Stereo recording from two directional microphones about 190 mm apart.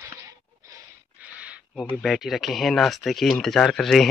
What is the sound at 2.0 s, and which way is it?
Speech, centre (ahead or behind).